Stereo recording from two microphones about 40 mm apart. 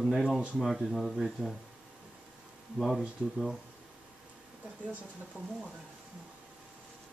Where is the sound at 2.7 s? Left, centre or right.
Centre.